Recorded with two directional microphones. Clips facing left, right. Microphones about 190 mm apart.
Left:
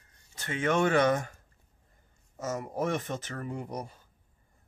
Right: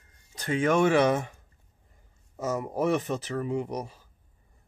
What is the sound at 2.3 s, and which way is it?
Speech, 35° right (ahead or behind).